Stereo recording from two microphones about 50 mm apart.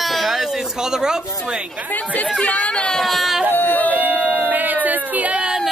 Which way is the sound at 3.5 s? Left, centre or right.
Left.